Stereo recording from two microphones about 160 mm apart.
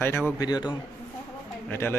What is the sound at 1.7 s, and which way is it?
Speech, 15° left (ahead or behind).